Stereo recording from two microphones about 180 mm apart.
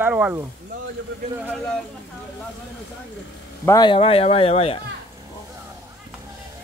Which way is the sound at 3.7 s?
25° left (ahead or behind).